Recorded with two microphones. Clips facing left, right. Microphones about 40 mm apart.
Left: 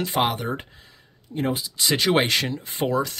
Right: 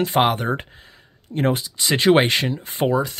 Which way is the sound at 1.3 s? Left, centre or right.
Right.